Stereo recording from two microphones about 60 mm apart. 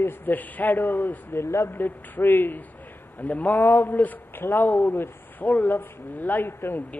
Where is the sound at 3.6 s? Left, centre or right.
Left.